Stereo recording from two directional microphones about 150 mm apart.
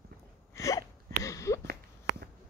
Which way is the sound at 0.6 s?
20° left (ahead or behind).